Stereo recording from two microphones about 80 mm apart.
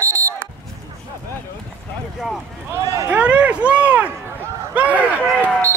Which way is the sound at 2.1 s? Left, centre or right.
Centre.